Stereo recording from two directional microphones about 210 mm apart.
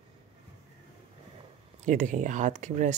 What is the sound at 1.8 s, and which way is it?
Speech, 35° right (ahead or behind).